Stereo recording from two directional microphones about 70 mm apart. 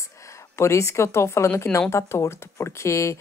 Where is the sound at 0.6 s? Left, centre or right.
Left.